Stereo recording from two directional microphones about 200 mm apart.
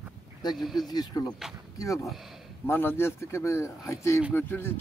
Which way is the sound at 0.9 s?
20° left (ahead or behind).